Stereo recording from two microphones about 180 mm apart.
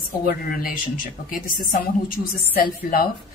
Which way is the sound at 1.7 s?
50° left (ahead or behind).